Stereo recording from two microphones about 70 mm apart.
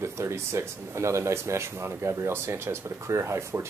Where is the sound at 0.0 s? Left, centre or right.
Right.